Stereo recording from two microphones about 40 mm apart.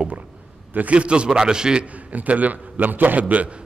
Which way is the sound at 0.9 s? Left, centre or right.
Right.